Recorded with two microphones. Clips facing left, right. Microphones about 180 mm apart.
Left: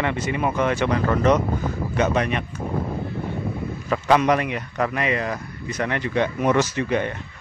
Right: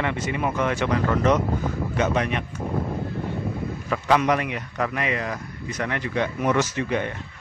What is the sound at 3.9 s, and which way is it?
Speech, 35° left (ahead or behind).